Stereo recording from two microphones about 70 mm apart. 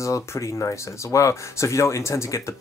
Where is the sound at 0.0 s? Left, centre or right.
Left.